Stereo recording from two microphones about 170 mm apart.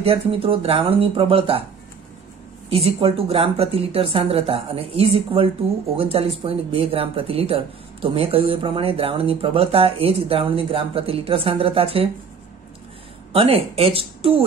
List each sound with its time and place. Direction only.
0.0 s speech: 35° right (ahead or behind)
2.7 s speech: 35° right (ahead or behind)
13.3 s speech: 35° right (ahead or behind)